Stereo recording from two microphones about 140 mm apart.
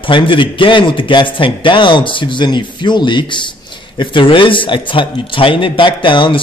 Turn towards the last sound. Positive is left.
turn(degrees=35)  # may be behind; listen again after turning